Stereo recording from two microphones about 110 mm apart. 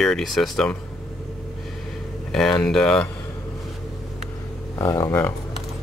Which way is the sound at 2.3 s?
5° left (ahead or behind).